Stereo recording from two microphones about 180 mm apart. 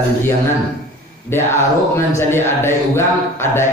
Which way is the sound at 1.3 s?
15° left (ahead or behind).